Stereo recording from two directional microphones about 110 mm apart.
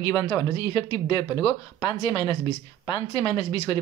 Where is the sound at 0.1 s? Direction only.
30° left (ahead or behind).